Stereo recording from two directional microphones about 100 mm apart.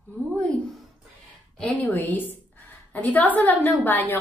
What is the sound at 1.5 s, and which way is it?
Speech, 5° left (ahead or behind).